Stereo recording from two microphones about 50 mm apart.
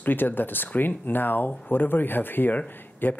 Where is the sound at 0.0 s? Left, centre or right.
Left.